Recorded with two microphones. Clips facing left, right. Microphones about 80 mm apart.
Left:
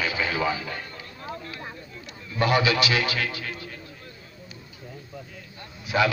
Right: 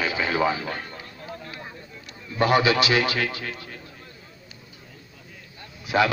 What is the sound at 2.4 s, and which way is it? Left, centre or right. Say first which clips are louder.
A man's voice: right 2 dB; right.